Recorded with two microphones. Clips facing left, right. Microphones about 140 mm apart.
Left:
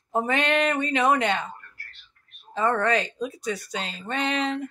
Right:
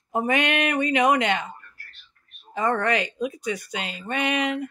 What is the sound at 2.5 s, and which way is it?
Speech, 15° right (ahead or behind).